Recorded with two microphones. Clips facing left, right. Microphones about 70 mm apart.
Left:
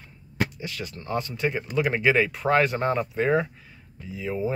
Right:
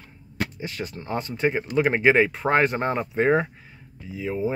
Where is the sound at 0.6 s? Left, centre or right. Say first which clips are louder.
Right 3 dB; right.